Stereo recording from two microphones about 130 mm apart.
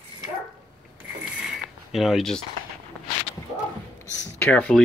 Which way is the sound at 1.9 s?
Centre (ahead or behind).